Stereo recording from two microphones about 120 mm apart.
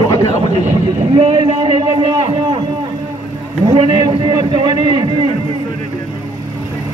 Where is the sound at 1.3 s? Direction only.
45° right (ahead or behind).